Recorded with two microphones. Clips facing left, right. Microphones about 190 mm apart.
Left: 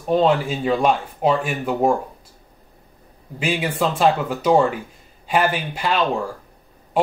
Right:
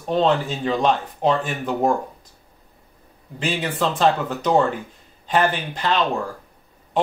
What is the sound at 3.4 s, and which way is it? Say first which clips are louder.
Speech: left 2 dB; 10° left (ahead or behind).